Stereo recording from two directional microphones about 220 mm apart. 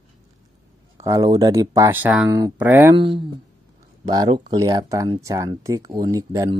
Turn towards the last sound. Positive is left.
turn(degrees=-15)  # may be behind; listen again after turning